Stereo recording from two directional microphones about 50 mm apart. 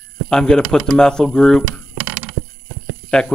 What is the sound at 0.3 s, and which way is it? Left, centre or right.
Speech, centre.